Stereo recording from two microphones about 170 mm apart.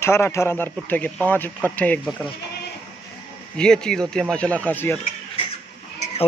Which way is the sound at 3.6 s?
5° left (ahead or behind).